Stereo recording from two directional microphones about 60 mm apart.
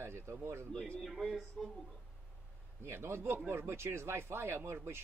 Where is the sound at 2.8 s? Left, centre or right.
Right.